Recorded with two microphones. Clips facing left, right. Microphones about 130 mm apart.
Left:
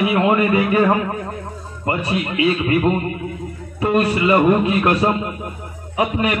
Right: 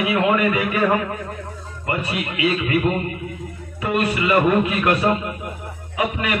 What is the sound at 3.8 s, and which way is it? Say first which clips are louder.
A man's voice: left 4 dB; 30° left (ahead or behind).